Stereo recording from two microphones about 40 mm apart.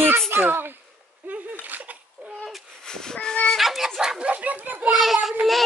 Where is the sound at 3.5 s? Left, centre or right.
Centre.